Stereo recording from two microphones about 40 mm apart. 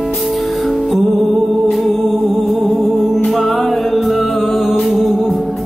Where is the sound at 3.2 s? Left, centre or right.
Centre.